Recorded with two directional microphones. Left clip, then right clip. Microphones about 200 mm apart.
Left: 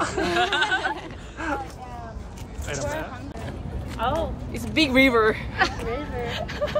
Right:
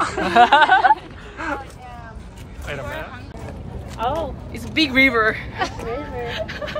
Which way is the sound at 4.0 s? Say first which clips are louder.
Right 3 dB; 40° right (ahead or behind).